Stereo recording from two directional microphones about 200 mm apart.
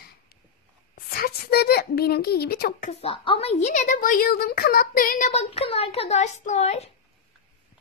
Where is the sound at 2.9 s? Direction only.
30° left (ahead or behind).